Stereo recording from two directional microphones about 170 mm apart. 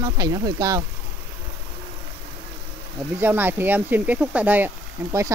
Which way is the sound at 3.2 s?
10° right (ahead or behind).